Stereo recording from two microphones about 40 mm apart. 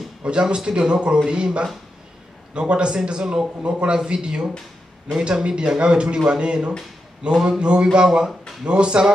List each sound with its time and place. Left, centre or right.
0.2 s speech: right